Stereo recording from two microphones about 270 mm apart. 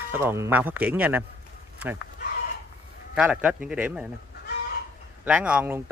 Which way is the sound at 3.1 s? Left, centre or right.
Centre.